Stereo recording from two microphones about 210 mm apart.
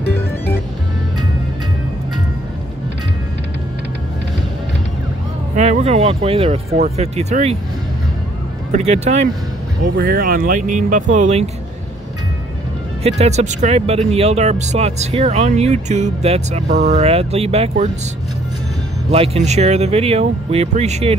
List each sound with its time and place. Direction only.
5.6 s speech: 30° right (ahead or behind)
8.7 s speech: 30° right (ahead or behind)
9.9 s speech: 45° right (ahead or behind)
13.0 s speech: 30° right (ahead or behind)
19.0 s speech: 30° right (ahead or behind)